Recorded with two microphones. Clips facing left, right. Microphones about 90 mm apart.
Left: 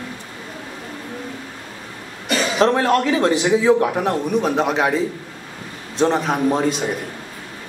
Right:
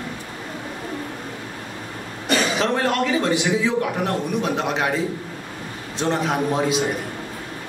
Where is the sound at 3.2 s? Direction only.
35° left (ahead or behind).